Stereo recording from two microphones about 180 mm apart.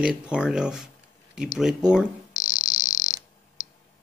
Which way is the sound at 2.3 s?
50° left (ahead or behind).